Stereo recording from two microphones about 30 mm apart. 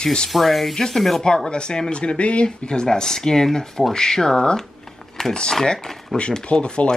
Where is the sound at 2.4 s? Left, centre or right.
Left.